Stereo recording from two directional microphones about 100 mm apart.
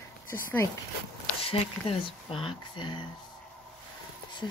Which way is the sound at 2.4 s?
50° left (ahead or behind).